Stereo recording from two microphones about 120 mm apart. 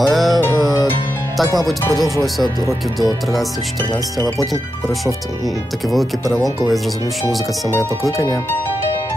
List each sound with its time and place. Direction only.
0.0 s music: centre (ahead or behind)
4.4 s speech: centre (ahead or behind)
6.2 s speech: 30° right (ahead or behind)